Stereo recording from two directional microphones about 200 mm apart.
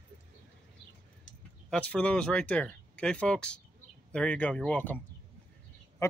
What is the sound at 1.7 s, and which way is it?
Speech, 5° left (ahead or behind).